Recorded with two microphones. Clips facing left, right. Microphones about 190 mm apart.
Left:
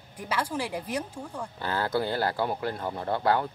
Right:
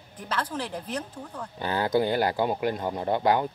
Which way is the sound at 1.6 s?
15° right (ahead or behind).